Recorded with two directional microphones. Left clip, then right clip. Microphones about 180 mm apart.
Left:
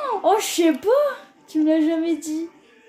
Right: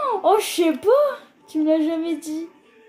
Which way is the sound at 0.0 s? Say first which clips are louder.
Right 1 dB; 15° right (ahead or behind).